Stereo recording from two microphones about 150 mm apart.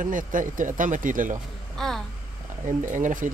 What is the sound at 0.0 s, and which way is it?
Speech, 65° right (ahead or behind).